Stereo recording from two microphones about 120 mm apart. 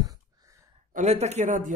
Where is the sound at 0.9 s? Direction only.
70° right (ahead or behind); by 1.7 s 90° right.